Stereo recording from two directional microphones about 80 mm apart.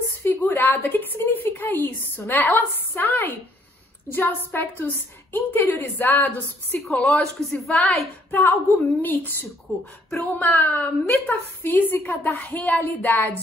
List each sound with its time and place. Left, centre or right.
0.2 s a woman's voice: left
6.9 s a woman's voice: centre
8.3 s a woman's voice: left